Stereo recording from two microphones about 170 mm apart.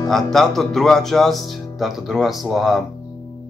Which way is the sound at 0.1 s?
Centre (ahead or behind).